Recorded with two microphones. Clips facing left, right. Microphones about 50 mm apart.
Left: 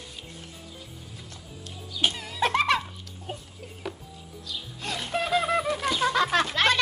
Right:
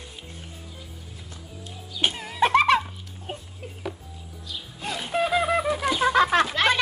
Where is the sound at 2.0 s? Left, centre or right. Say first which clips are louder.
Right 3 dB; right.